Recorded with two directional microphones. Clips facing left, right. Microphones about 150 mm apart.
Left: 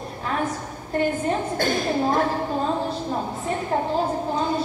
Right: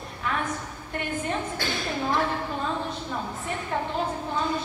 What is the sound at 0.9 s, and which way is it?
A woman's voice, 35° left (ahead or behind).